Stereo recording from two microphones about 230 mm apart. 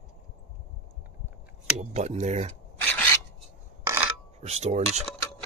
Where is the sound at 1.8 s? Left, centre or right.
Right.